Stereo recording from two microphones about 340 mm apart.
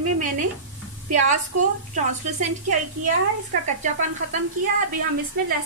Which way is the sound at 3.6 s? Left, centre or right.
Right.